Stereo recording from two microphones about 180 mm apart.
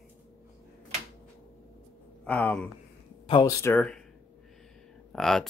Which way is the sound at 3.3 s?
20° left (ahead or behind).